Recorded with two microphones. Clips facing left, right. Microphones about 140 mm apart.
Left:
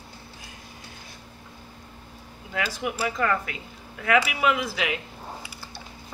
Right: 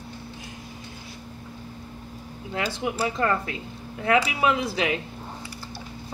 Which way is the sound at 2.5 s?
30° right (ahead or behind).